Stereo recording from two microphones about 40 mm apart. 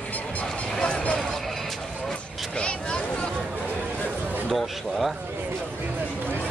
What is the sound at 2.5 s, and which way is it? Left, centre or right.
Vehicle, left.